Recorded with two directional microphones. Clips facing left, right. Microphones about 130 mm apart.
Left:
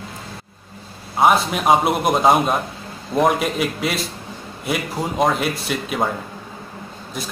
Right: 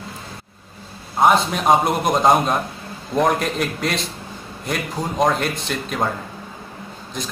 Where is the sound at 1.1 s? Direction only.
5° left (ahead or behind).